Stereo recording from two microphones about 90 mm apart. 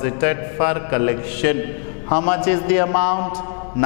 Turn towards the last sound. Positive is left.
turn(degrees=15)  # may be behind; listen again after turning